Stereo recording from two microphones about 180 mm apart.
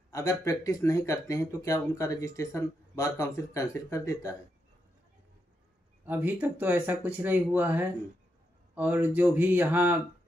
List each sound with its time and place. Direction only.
0.1 s speech: 20° left (ahead or behind)
6.0 s speech: 10° right (ahead or behind)